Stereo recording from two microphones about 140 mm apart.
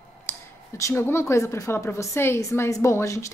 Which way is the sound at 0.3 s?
20° left (ahead or behind).